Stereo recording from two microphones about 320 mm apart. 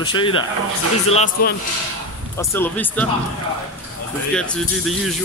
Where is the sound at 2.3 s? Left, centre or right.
Centre.